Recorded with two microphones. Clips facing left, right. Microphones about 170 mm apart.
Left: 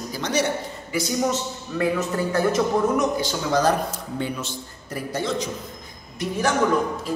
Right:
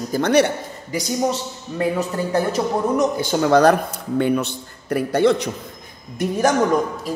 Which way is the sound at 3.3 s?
60° right (ahead or behind).